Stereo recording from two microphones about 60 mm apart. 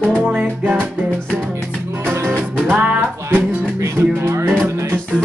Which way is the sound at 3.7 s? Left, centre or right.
Right.